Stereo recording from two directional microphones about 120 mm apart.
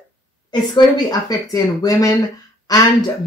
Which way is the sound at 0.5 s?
40° left (ahead or behind).